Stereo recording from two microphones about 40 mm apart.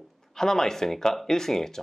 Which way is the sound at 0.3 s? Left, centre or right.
Centre.